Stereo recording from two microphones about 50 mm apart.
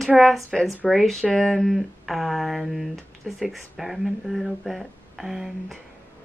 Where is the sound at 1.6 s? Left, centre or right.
Centre.